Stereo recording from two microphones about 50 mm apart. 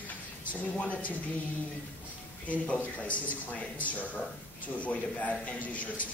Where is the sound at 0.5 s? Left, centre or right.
Left.